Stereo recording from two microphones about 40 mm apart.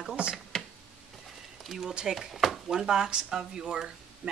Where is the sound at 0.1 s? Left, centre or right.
Right.